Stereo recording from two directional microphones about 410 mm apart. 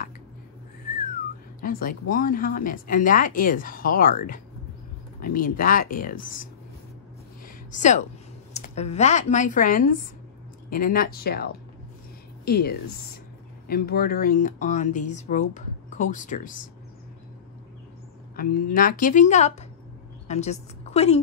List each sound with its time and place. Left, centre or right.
1.6 s speech: centre
7.4 s a sound: centre
8.5 s speech: centre
18.3 s a woman's voice: left